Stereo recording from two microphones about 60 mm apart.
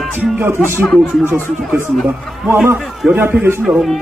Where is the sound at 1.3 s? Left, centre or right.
Right.